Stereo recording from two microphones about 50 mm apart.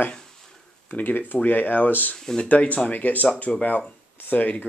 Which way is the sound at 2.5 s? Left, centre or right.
Left.